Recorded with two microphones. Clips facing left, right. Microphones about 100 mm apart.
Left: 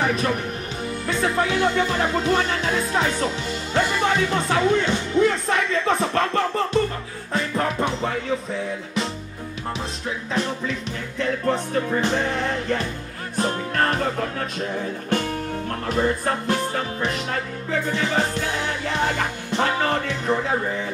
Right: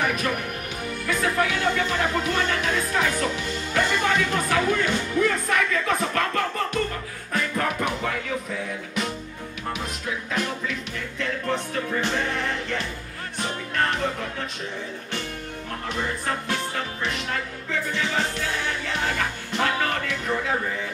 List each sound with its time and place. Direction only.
0.0 s speech: 30° left (ahead or behind)
1.0 s music: 30° left (ahead or behind)
3.7 s speech: 25° left (ahead or behind)
7.3 s music: 25° left (ahead or behind)
10.3 s music: 30° left (ahead or behind)
15.9 s music: 40° left (ahead or behind)